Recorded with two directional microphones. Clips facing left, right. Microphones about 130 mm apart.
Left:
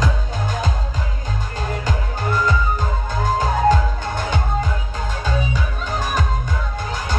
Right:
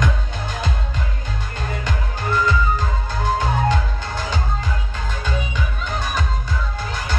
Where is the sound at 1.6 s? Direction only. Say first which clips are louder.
Left 2 dB; 40° left (ahead or behind).